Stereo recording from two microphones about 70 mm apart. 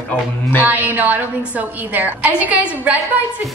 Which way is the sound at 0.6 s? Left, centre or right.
Right.